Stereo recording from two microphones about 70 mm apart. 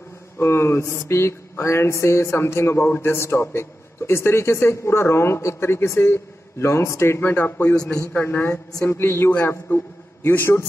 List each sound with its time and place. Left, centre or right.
0.4 s a man's voice: left
8.4 s a woman's voice: left
8.8 s a man's voice: left
9.7 s a man's voice: left